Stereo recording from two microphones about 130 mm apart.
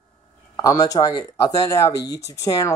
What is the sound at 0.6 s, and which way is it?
Speech, 30° left (ahead or behind).